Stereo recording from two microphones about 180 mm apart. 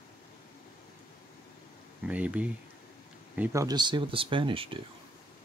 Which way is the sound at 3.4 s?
15° right (ahead or behind).